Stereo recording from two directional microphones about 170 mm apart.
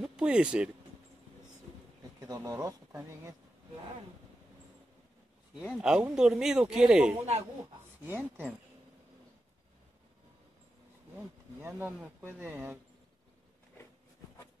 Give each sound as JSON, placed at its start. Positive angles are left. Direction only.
{"t": 0.0, "sound": "speech", "side_deg": -5}
{"t": 2.1, "sound": "speech", "side_deg": -20}
{"t": 5.6, "sound": "speech", "side_deg": -5}
{"t": 11.1, "sound": "speech", "side_deg": -10}